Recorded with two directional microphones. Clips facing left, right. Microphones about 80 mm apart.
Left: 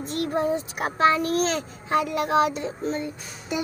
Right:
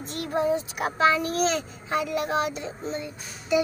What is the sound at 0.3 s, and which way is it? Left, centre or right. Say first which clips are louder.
A child's voice: right 2 dB; left.